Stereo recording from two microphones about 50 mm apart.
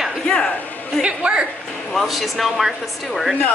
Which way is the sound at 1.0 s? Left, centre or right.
Right.